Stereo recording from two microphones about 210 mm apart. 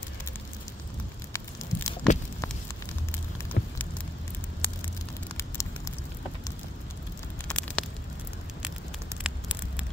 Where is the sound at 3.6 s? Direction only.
50° left (ahead or behind).